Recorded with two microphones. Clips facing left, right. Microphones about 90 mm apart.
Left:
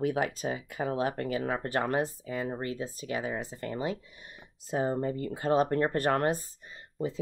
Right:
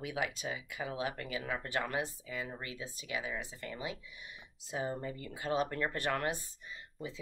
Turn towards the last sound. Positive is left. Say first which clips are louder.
# left 9 dB
turn(degrees=45)  # may be behind; listen again after turning